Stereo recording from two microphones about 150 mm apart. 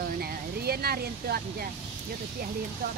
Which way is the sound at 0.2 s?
90° right.